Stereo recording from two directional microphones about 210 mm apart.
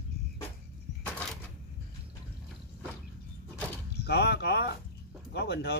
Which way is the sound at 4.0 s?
50° left (ahead or behind).